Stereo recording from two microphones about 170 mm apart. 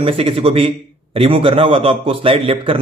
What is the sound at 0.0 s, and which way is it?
A man's voice, 35° right (ahead or behind).